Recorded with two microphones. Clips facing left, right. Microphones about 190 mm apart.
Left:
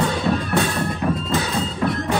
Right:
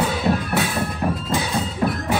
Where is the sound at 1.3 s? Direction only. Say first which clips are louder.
Left 1 dB; 15° right (ahead or behind).